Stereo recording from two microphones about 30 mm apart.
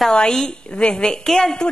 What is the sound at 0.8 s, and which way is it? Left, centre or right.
Speech, left.